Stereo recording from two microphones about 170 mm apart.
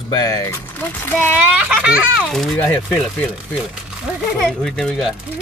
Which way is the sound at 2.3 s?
5° left (ahead or behind).